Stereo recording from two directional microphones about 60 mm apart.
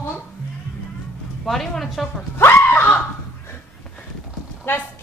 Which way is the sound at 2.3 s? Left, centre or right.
Left.